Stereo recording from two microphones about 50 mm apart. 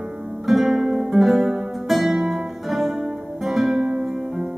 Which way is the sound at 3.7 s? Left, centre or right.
Right.